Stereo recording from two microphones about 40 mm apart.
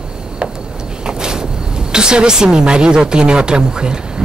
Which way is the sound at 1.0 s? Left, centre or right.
Centre.